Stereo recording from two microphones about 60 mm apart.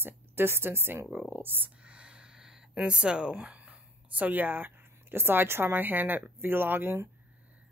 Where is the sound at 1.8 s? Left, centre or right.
Centre.